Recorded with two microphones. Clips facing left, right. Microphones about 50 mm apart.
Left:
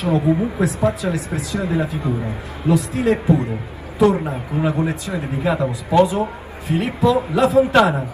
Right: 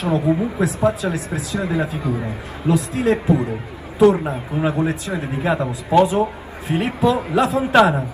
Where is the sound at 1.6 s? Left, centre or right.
Right.